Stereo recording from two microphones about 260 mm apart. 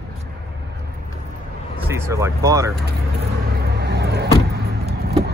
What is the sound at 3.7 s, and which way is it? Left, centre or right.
Vehicle, right.